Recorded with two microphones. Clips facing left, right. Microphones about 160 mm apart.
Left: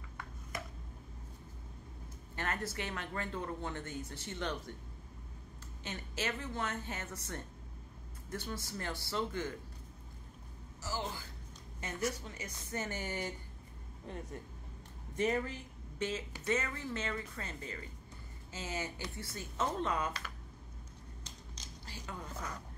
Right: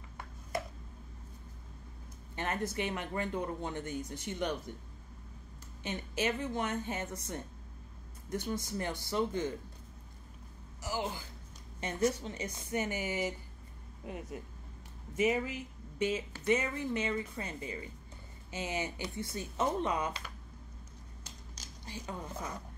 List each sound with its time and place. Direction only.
2.3 s speech: 20° right (ahead or behind)
5.9 s speech: 20° right (ahead or behind)
10.8 s a woman's voice: 15° right (ahead or behind)
21.8 s a woman's voice: 20° right (ahead or behind)